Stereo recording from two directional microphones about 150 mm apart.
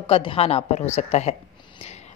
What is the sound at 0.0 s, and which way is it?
A woman's voice, 40° left (ahead or behind).